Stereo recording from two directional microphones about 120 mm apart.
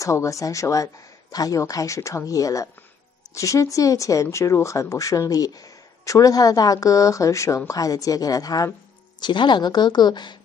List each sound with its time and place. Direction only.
0.0 s a woman's voice: 25° left (ahead or behind)